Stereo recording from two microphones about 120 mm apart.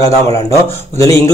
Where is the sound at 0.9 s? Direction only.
25° left (ahead or behind).